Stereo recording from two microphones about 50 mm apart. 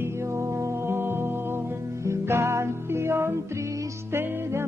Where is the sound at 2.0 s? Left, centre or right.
Right.